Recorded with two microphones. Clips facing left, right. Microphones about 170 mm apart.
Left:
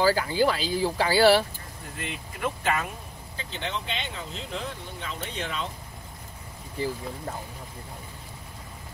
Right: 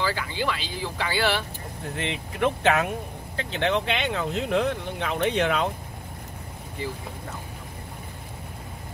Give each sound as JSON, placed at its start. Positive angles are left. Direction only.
{"t": 0.0, "sound": "speech", "side_deg": 40}
{"t": 2.0, "sound": "speech", "side_deg": -75}